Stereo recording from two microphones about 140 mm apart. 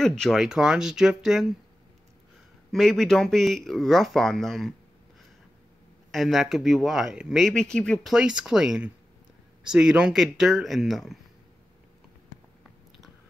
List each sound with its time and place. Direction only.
0.0 s speech: 5° left (ahead or behind)
2.7 s speech: centre (ahead or behind)
6.1 s speech: centre (ahead or behind)